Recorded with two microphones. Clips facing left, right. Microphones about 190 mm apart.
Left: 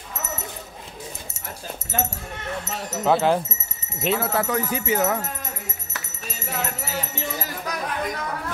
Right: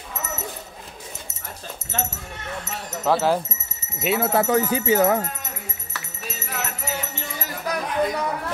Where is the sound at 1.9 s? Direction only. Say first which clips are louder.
Left 2 dB; 10° left (ahead or behind).